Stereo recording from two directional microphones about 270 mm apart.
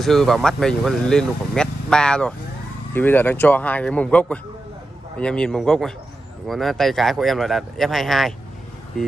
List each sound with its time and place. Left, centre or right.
0.0 s speech: centre